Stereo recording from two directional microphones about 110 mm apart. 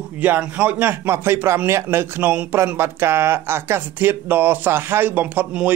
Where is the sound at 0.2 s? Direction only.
15° right (ahead or behind).